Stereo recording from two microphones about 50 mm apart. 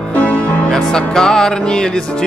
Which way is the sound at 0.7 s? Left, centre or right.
Centre.